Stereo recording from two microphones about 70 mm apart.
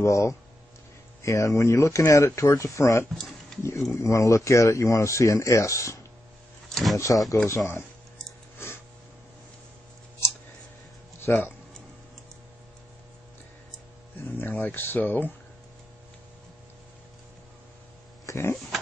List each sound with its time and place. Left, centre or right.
0.0 s speech: left
6.7 s a sound: centre
7.2 s speech: left
8.5 s a sound: left
11.1 s speech: left
14.2 s speech: left
18.2 s speech: left